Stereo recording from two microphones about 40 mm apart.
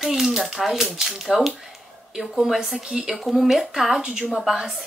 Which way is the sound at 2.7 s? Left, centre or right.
Right.